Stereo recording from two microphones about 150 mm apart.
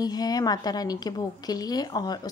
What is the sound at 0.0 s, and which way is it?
A woman's voice, 25° left (ahead or behind).